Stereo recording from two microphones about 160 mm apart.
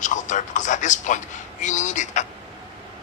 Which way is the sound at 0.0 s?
50° left (ahead or behind).